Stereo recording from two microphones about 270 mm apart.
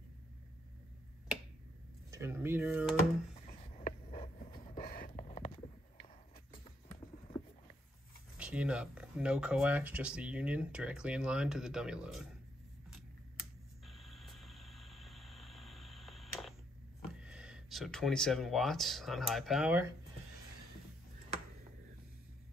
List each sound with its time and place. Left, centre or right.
2.0 s speech: centre
3.4 s a sound: left
4.7 s a sound: left
8.4 s speech: centre
13.8 s vehicle: centre
17.2 s speech: centre